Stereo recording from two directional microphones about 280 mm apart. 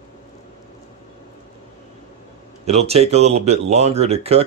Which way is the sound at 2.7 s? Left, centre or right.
Right.